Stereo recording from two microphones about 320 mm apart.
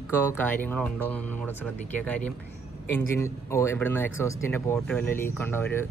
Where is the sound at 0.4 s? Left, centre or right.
Centre.